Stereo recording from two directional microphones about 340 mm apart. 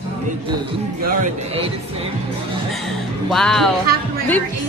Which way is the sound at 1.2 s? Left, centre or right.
Centre.